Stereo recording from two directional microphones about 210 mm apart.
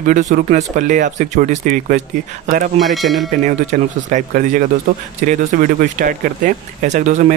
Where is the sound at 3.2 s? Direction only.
35° right (ahead or behind).